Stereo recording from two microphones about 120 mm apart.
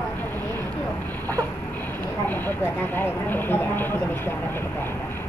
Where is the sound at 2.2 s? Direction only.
15° left (ahead or behind).